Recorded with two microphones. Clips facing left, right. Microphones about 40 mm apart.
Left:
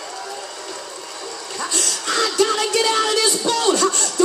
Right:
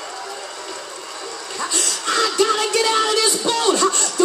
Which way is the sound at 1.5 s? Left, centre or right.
Right.